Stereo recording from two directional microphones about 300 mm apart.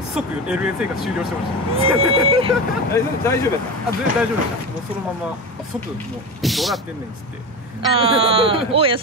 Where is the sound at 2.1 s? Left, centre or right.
Centre.